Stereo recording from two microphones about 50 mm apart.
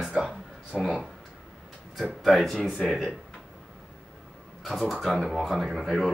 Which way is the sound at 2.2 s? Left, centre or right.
Centre.